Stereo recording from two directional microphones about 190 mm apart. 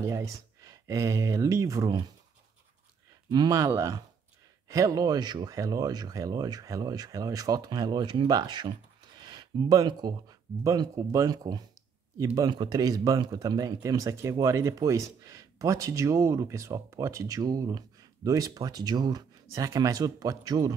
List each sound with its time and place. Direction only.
0.0 s speech: 15° right (ahead or behind)
3.3 s speech: 20° right (ahead or behind)